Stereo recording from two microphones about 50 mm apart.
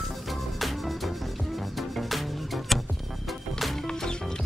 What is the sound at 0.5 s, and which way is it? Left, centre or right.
Music, centre.